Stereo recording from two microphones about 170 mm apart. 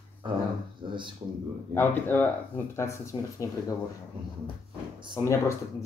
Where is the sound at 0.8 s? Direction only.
30° right (ahead or behind).